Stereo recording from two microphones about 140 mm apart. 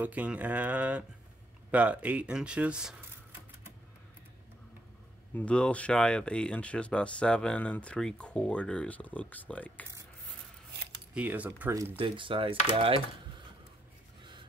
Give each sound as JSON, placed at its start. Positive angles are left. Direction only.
{"t": 0.0, "sound": "speech", "side_deg": -10}
{"t": 5.3, "sound": "speech", "side_deg": 10}
{"t": 11.1, "sound": "speech", "side_deg": -10}
{"t": 12.0, "sound": "speech", "side_deg": -40}